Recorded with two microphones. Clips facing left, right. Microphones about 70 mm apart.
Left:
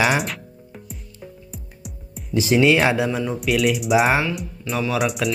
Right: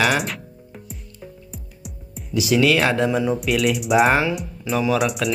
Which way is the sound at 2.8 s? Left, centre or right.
Centre.